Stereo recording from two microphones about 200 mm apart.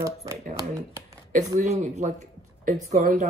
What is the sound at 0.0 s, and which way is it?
Speech, 15° right (ahead or behind).